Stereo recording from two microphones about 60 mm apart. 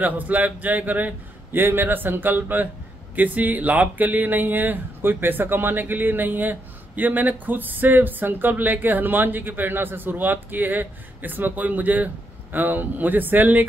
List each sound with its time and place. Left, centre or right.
0.0 s speech: right